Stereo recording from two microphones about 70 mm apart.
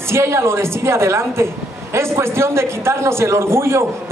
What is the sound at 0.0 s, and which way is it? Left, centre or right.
A man's voice, right.